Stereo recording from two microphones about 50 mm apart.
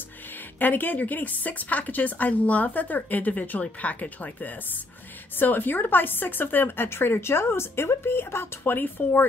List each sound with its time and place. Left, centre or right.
0.6 s a woman's voice: left
6.9 s a woman's voice: left